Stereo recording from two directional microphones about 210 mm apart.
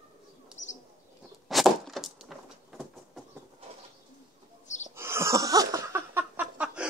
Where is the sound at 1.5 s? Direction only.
Centre (ahead or behind).